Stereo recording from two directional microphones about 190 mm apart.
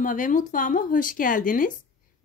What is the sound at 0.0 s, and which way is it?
A woman's voice, 45° left (ahead or behind).